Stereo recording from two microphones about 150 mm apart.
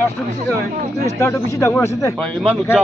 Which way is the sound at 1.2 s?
20° left (ahead or behind).